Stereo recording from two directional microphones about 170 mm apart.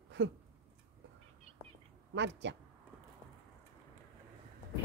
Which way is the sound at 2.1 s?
90° right.